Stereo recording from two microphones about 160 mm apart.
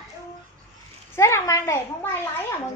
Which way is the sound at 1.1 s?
15° left (ahead or behind).